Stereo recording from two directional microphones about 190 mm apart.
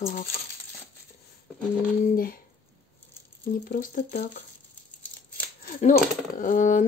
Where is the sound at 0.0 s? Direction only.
50° left (ahead or behind).